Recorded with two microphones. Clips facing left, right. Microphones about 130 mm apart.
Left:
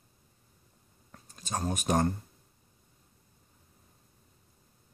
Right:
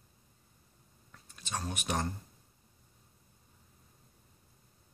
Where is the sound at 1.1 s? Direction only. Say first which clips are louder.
Left 4 dB; 40° left (ahead or behind).